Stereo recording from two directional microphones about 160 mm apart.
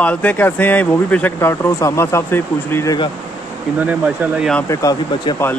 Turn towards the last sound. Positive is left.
turn(degrees=20)  # may be behind; listen again after turning